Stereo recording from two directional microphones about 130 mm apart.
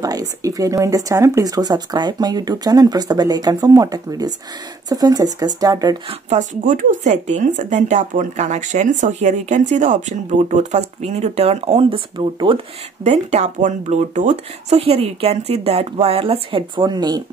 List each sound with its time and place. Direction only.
0.0 s speech: 25° right (ahead or behind)
6.6 s speech: 90° right; by 12.0 s 55° right (ahead or behind)
12.2 s speech: 40° right (ahead or behind)
13.1 s speech: 60° right (ahead or behind); by 17.2 s 35° right (ahead or behind)